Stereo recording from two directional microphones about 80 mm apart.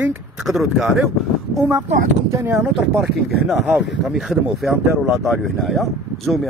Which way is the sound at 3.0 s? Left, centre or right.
Centre.